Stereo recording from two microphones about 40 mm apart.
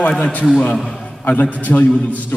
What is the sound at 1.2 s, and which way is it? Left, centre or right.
Speech, left.